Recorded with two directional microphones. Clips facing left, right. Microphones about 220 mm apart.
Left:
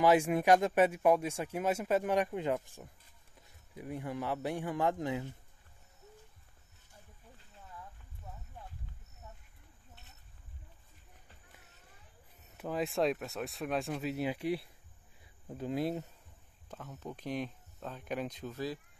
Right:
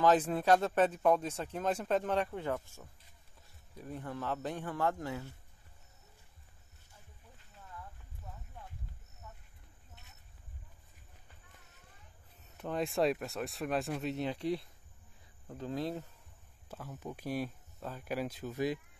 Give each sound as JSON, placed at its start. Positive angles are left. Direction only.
{"t": 0.0, "sound": "speech", "side_deg": 10}
{"t": 9.2, "sound": "a sound", "side_deg": 25}
{"t": 12.5, "sound": "speech", "side_deg": 5}
{"t": 16.6, "sound": "speech", "side_deg": -5}